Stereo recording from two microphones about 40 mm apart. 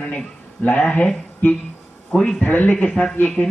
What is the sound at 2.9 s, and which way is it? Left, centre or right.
Speech, left.